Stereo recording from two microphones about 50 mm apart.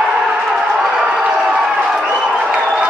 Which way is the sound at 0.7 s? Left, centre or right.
Centre.